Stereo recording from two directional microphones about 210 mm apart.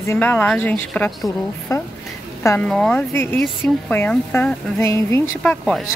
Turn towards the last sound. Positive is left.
turn(degrees=5)  # may be behind; listen again after turning